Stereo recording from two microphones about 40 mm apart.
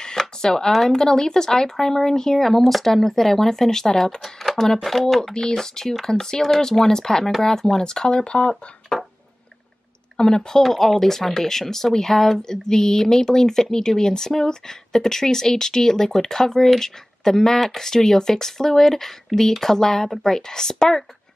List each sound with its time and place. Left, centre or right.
0.0 s speech: centre
10.1 s speech: centre
10.6 s speech: centre